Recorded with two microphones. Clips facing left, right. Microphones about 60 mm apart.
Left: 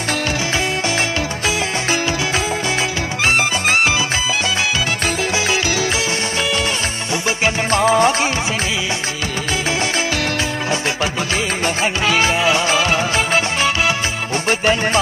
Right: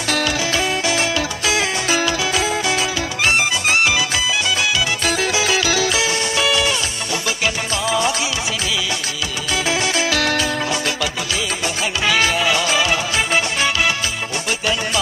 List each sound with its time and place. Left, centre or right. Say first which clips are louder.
7.2 s music: left 5 dB; left
11.6 s music: left 2 dB; left
14.5 s music: left 6 dB; left